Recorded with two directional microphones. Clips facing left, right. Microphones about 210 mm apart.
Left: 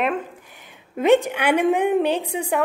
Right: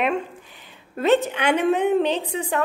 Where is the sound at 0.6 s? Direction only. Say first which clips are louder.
Left 2 dB; 15° left (ahead or behind).